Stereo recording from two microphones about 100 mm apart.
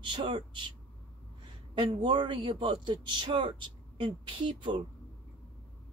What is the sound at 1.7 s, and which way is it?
Speech, 60° right (ahead or behind).